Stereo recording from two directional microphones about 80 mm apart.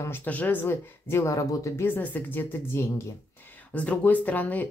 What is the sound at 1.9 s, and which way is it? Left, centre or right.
Speech, left.